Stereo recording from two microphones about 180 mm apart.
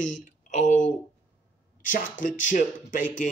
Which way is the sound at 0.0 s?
45° left (ahead or behind).